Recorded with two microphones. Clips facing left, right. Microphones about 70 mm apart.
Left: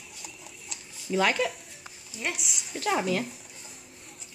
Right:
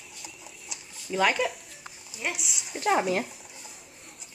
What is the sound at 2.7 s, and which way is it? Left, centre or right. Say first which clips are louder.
Speech: right 3 dB; centre.